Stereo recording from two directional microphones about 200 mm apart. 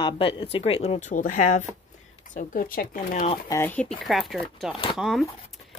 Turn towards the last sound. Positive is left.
turn(degrees=0)  # may be behind; listen again after turning